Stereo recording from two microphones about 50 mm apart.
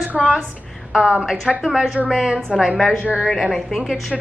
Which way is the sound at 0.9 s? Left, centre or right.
Centre.